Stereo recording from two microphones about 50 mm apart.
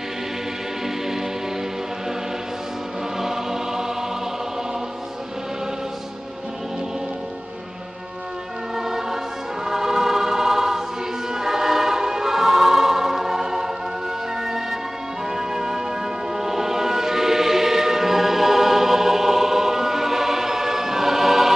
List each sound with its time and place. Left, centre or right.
3.2 s choir: centre
8.7 s choir: centre
14.4 s music: centre